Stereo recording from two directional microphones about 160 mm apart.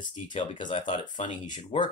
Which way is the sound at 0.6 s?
50° left (ahead or behind).